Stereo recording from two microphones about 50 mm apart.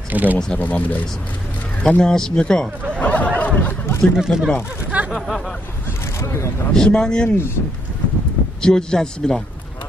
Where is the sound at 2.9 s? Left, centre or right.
Left.